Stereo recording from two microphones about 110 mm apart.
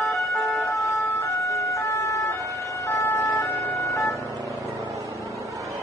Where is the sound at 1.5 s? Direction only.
30° left (ahead or behind).